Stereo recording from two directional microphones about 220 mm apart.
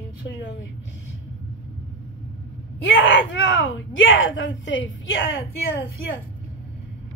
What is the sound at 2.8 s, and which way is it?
Speech, 55° left (ahead or behind).